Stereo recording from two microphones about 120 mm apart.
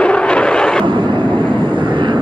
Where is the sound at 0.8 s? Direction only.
40° right (ahead or behind).